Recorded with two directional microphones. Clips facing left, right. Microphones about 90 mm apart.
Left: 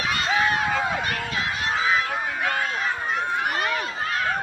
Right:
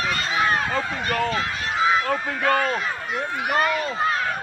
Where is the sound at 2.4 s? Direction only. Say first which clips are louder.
Right 7 dB; 45° right (ahead or behind).